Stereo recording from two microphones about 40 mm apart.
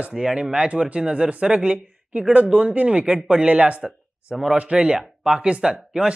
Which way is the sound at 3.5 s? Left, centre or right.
Right.